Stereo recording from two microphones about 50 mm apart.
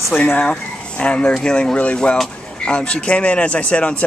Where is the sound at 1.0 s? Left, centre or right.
Left.